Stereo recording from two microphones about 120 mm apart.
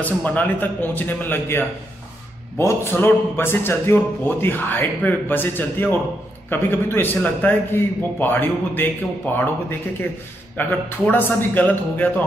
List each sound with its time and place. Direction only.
0.0 s a man's voice: 15° left (ahead or behind)